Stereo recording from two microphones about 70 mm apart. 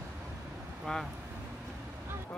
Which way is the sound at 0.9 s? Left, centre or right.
Centre.